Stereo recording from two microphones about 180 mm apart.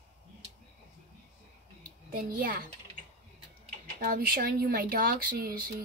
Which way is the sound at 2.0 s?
55° right (ahead or behind).